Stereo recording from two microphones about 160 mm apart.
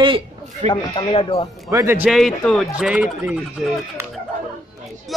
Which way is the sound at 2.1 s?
Centre (ahead or behind).